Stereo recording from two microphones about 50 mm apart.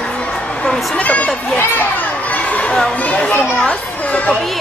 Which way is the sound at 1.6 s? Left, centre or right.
Left.